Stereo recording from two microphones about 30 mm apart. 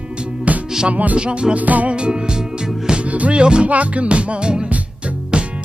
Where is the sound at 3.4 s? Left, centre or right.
Right.